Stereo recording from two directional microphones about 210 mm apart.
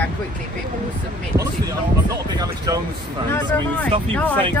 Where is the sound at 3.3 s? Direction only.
10° left (ahead or behind).